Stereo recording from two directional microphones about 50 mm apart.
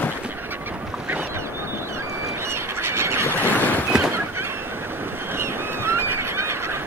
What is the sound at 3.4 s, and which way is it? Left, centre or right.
Boat, left.